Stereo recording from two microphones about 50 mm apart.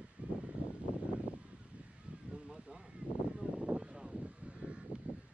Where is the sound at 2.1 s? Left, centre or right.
Right.